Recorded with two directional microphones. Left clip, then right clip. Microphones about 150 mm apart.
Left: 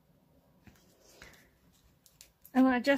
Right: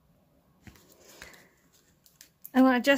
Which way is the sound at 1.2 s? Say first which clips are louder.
Right 6 dB; 20° right (ahead or behind).